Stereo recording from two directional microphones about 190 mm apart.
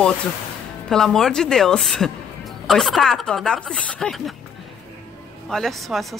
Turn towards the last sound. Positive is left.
turn(degrees=0)  # may be behind; listen again after turning